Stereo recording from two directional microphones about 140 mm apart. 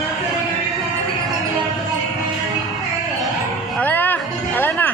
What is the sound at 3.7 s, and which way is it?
Music, 15° left (ahead or behind).